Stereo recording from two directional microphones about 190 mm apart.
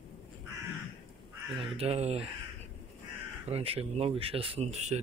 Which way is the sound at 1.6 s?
30° right (ahead or behind).